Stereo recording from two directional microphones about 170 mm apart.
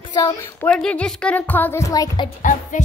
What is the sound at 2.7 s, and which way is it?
Music, 50° left (ahead or behind).